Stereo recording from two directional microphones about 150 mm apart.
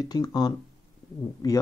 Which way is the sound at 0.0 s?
25° left (ahead or behind).